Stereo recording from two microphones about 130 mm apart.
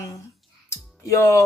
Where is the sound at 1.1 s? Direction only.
20° left (ahead or behind).